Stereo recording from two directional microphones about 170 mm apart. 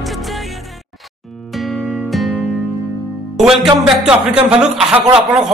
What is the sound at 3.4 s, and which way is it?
A man's voice, centre (ahead or behind).